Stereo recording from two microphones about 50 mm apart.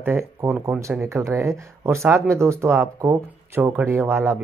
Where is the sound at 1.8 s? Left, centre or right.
Right.